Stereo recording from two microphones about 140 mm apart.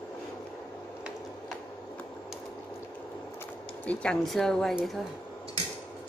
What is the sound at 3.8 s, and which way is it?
A woman's voice, 10° left (ahead or behind).